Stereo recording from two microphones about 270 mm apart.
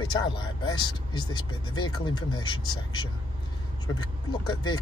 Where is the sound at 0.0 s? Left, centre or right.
Centre.